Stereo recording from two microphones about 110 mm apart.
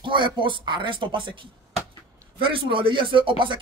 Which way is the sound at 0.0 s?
45° right (ahead or behind).